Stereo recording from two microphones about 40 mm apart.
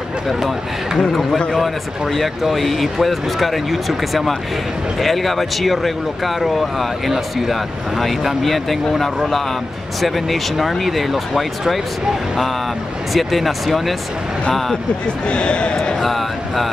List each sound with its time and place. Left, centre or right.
0.9 s speech: centre
13.1 s speech: centre
15.0 s a man's voice: left
16.0 s a sound: centre